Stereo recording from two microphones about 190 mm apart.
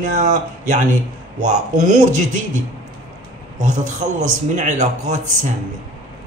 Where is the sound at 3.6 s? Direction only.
40° right (ahead or behind).